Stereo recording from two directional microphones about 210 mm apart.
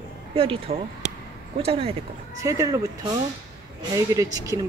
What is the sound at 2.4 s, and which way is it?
A woman's voice, 15° right (ahead or behind).